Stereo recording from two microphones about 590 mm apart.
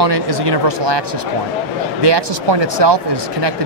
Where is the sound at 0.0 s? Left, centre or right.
Right.